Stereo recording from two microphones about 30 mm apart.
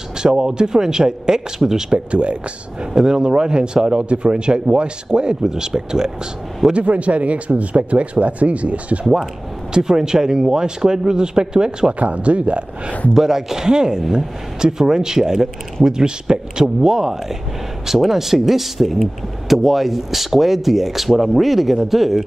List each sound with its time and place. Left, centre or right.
0.2 s speech: right
2.0 s speech: right
2.9 s speech: right
6.7 s speech: right
9.8 s speech: right
12.0 s speech: right
13.1 s speech: centre